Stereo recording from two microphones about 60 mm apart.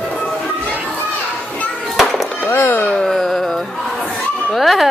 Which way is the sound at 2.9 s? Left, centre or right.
Centre.